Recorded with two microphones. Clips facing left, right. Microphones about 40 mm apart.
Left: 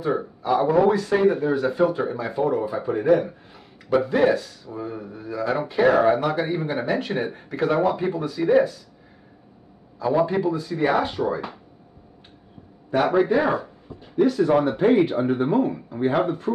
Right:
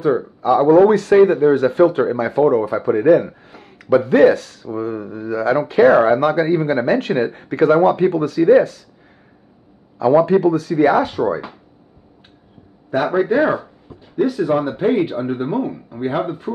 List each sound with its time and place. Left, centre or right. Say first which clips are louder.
0.0 s speech: right 7 dB; right
8.0 s speech: right 9 dB; right
9.9 s speech: right 8 dB; right
12.9 s speech: right 2 dB; centre
13.4 s speech: right 5 dB; right
14.4 s speech: right 1 dB; centre